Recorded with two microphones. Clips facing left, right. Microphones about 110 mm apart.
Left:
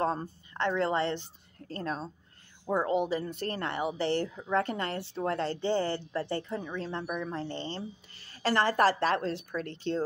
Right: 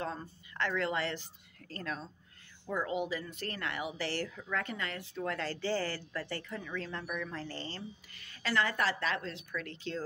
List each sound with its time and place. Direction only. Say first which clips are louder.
0.0 s speech: left 9 dB; 45° left (ahead or behind)
0.6 s a woman's voice: left 5 dB; 30° left (ahead or behind)